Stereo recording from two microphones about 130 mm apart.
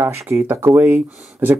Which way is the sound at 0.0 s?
20° right (ahead or behind).